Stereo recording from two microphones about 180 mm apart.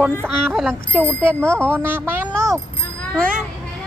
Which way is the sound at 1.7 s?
10° right (ahead or behind).